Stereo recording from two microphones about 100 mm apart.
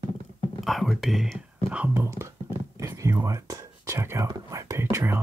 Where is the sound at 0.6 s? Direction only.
Centre (ahead or behind).